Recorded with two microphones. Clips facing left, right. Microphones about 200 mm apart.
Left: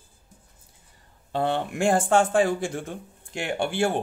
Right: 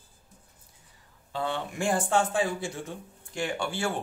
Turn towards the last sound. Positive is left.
turn(degrees=55)  # may be behind; listen again after turning